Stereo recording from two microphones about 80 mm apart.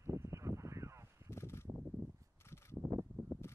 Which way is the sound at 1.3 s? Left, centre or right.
Left.